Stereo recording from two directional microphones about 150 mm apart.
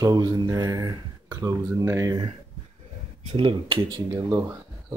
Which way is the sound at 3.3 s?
35° right (ahead or behind).